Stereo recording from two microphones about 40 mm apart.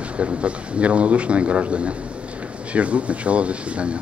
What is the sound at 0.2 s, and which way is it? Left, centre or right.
A man's voice, right.